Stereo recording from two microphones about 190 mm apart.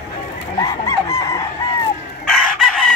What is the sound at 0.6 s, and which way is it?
Chicken, 20° left (ahead or behind).